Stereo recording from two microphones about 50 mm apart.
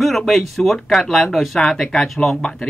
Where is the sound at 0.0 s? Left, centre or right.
Centre.